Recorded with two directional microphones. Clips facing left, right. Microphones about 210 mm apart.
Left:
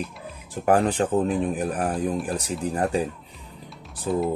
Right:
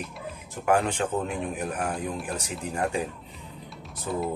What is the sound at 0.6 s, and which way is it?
Speech, 35° left (ahead or behind).